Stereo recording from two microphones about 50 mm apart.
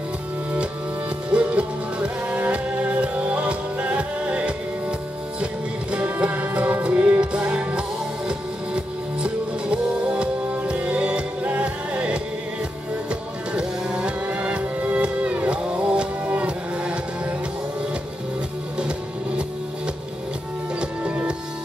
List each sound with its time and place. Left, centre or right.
1.3 s music: right
21.0 s music: right